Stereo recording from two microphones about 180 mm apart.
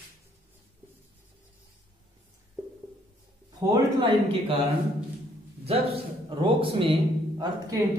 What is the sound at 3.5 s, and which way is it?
Speech, 20° right (ahead or behind).